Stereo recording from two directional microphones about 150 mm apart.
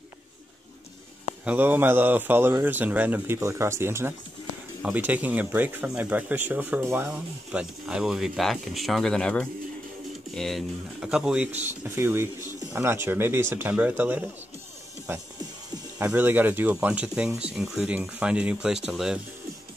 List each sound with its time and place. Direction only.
1.4 s speech: 10° right (ahead or behind)